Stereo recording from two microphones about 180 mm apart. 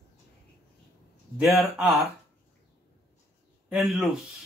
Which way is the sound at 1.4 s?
Centre (ahead or behind).